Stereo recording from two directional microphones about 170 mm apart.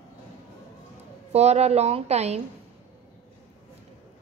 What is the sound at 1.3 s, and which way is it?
A woman's voice, 40° right (ahead or behind).